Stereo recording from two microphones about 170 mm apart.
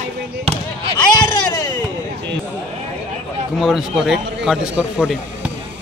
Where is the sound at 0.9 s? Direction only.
25° left (ahead or behind).